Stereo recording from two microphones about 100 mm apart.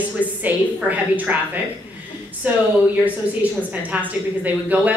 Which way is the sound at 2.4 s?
15° right (ahead or behind).